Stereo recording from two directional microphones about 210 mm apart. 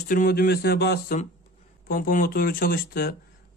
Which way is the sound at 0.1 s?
40° left (ahead or behind).